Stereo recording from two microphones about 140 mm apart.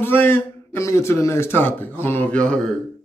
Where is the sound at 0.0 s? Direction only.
15° left (ahead or behind).